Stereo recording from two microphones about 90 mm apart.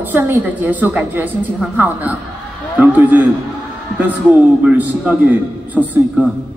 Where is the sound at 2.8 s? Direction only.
20° right (ahead or behind).